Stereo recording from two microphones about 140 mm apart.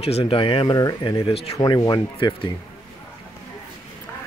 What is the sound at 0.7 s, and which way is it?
Speech, 25° left (ahead or behind).